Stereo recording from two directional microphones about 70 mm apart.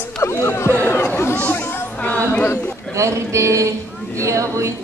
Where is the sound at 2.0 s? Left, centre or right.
Centre.